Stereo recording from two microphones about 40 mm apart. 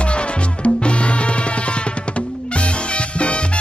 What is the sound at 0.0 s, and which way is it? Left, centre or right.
Music, left.